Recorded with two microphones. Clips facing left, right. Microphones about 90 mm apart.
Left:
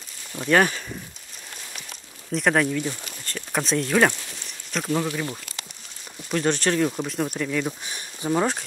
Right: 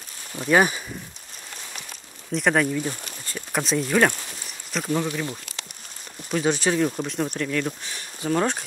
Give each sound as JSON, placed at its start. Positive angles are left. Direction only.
{"t": 0.3, "sound": "speech", "side_deg": -10}
{"t": 2.3, "sound": "speech", "side_deg": 0}
{"t": 4.3, "sound": "a sound", "side_deg": 0}
{"t": 6.3, "sound": "speech", "side_deg": -5}
{"t": 7.8, "sound": "speech", "side_deg": 15}
{"t": 8.4, "sound": "speech", "side_deg": 0}